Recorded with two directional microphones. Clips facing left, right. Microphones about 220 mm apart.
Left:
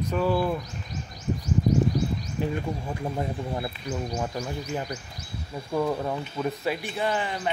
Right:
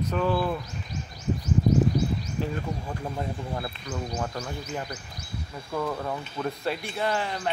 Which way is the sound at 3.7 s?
10° left (ahead or behind).